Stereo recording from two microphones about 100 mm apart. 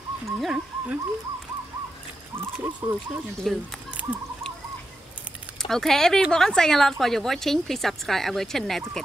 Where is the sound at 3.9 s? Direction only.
15° right (ahead or behind).